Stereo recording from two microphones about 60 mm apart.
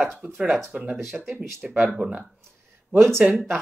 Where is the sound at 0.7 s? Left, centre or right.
Right.